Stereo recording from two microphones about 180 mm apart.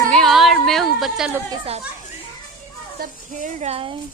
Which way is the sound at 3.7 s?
30° right (ahead or behind).